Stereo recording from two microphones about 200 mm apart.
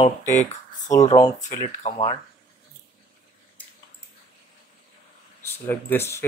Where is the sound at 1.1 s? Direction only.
20° left (ahead or behind).